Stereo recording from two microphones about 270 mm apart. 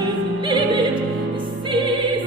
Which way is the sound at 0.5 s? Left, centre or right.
Centre.